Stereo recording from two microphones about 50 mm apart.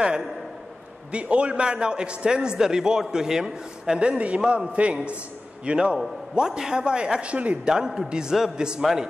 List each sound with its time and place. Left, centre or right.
1.1 s a man's voice: right
7.7 s a man's voice: centre